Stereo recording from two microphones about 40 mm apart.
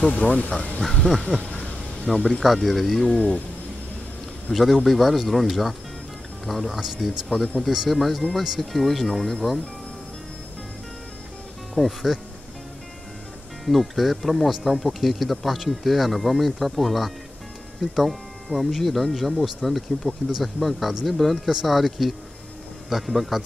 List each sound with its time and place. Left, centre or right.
0.1 s speech: left
0.8 s speech: centre
2.1 s speech: centre
2.4 s speech: centre
3.1 s speech: centre
4.5 s speech: centre
11.7 s speech: centre
13.7 s speech: centre